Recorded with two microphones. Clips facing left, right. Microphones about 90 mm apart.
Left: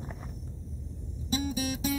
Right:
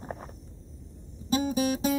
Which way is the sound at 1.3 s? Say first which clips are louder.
Right 5 dB; 45° right (ahead or behind).